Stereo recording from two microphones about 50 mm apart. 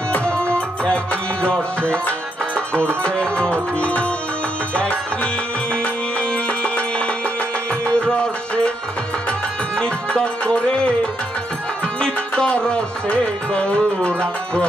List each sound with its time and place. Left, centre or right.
0.1 s music: left
9.8 s music: centre